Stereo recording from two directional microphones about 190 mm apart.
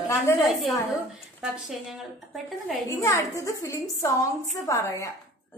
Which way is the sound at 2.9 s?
15° left (ahead or behind).